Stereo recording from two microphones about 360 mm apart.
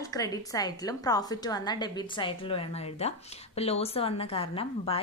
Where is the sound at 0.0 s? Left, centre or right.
Centre.